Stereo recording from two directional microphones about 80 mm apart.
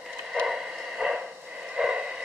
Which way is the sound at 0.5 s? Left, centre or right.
Centre.